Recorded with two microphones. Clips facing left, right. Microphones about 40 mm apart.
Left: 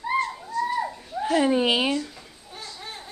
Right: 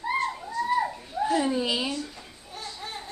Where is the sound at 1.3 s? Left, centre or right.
Left.